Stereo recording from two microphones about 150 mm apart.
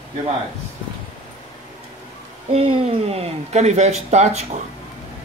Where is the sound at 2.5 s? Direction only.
40° right (ahead or behind).